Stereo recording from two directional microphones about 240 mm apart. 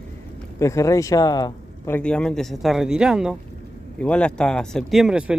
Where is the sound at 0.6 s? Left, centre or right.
Centre.